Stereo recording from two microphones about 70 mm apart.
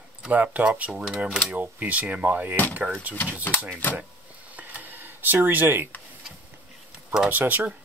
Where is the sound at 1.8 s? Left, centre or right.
Right.